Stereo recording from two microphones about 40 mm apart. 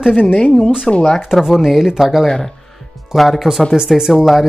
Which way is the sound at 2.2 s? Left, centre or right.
Centre.